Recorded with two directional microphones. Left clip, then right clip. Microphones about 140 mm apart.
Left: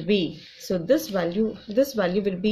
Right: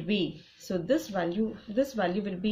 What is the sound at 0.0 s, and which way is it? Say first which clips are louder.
Speech: left 7 dB; 30° left (ahead or behind).